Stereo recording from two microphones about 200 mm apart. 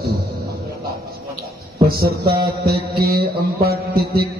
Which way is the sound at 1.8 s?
50° right (ahead or behind).